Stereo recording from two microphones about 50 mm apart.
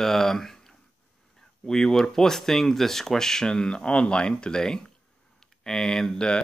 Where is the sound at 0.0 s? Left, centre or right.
Centre.